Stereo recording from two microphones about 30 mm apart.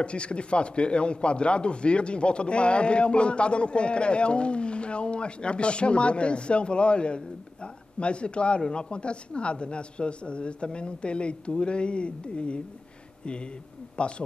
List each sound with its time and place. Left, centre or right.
0.0 s a man's voice: left
13.9 s speech: left